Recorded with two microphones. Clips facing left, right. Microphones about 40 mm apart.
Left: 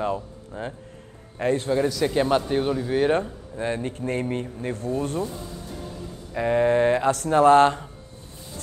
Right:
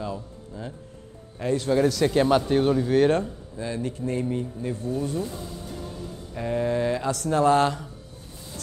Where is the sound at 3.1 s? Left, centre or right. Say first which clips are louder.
Left 1 dB; left.